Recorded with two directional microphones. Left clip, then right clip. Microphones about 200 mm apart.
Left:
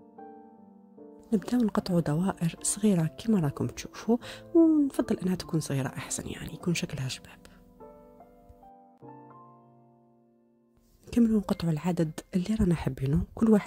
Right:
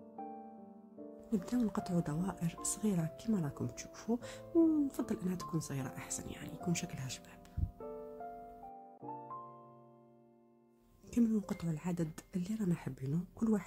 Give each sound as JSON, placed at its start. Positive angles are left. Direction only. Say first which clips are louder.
{"t": 1.3, "sound": "speech", "louder": "left 9 dB", "side_deg": 45}
{"t": 11.1, "sound": "speech", "louder": "left 9 dB", "side_deg": 45}